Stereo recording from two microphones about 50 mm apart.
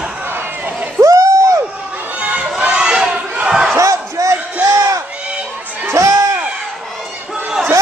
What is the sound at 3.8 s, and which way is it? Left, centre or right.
Slam, right.